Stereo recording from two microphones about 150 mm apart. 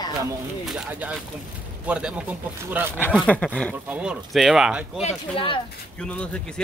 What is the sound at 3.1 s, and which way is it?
Speech, 5° left (ahead or behind).